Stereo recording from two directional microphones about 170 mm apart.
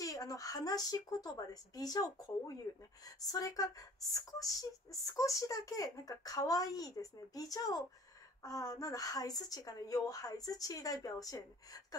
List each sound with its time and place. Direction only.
0.0 s speech: 20° left (ahead or behind)